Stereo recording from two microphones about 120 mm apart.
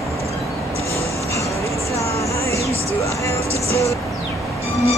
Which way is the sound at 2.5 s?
25° left (ahead or behind).